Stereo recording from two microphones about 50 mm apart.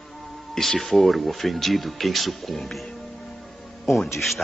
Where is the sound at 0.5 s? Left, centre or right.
Centre.